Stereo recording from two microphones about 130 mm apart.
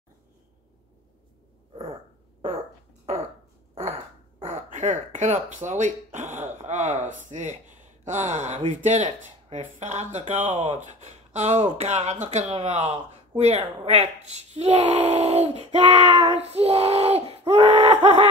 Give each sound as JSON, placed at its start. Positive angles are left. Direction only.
{"t": 4.5, "sound": "speech", "side_deg": -70}